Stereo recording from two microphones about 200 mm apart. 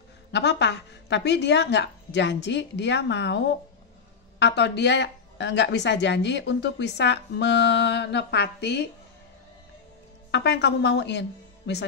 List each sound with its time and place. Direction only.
0.3 s a woman's voice: 55° left (ahead or behind)
10.3 s a woman's voice: 60° left (ahead or behind)